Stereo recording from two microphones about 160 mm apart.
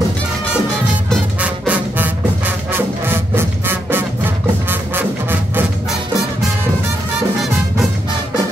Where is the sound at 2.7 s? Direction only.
15° right (ahead or behind).